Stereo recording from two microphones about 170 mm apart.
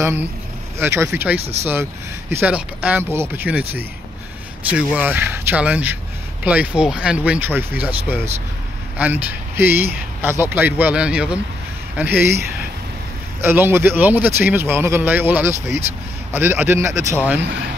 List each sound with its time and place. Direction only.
0.0 s speech: 15° right (ahead or behind)
1.4 s speech: 40° right (ahead or behind)
1.7 s speech: 15° right (ahead or behind)
8.9 s speech: 10° right (ahead or behind)
13.4 s speech: 15° right (ahead or behind)